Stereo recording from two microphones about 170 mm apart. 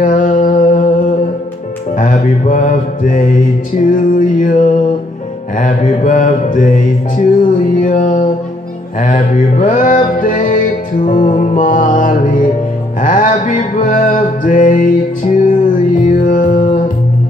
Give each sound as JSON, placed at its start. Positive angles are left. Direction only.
{"t": 0.0, "sound": "music", "side_deg": 50}
{"t": 2.0, "sound": "mantra", "side_deg": 50}
{"t": 16.2, "sound": "music", "side_deg": 50}